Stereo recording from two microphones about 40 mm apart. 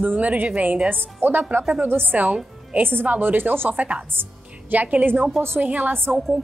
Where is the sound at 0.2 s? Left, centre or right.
Right.